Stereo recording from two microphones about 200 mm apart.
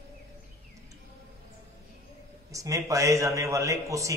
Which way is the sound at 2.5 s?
15° right (ahead or behind).